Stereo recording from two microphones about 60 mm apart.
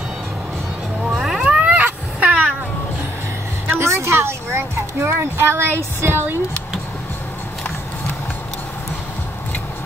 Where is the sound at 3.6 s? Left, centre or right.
Right.